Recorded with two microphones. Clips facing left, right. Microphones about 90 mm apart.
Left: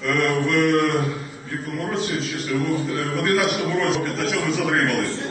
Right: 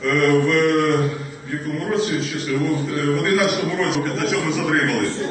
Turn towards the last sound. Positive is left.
turn(degrees=0)  # may be behind; listen again after turning